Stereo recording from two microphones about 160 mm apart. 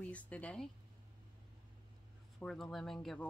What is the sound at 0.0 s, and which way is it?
Speech, 10° left (ahead or behind).